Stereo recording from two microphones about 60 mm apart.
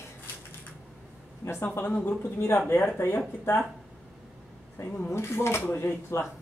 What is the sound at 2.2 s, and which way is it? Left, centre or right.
Speech, left.